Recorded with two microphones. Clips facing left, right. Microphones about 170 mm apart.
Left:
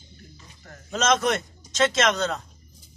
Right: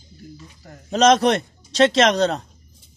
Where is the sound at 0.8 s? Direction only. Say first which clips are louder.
Right 7 dB; 35° right (ahead or behind).